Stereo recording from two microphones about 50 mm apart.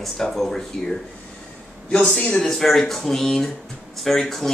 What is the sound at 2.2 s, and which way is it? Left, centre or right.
Speech, left.